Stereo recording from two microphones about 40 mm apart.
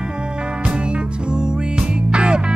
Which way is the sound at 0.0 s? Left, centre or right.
Right.